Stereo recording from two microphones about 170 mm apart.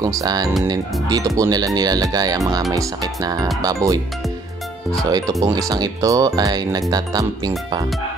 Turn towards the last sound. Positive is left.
turn(degrees=-25)  # may be behind; listen again after turning